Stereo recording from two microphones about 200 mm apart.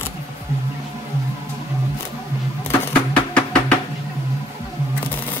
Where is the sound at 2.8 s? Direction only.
5° left (ahead or behind).